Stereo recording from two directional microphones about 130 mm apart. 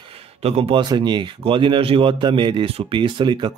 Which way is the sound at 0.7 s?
35° right (ahead or behind).